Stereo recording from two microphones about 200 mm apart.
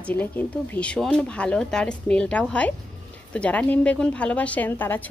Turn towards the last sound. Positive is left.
turn(degrees=10)  # may be behind; listen again after turning